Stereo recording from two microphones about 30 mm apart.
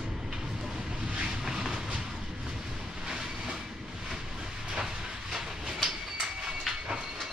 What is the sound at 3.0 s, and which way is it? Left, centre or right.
Train, right.